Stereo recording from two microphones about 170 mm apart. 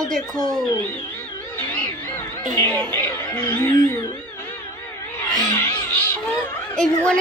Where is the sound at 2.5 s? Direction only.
15° left (ahead or behind).